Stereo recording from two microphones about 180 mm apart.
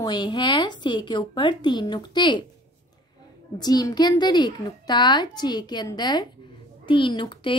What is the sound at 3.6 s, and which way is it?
A woman's voice, 25° left (ahead or behind).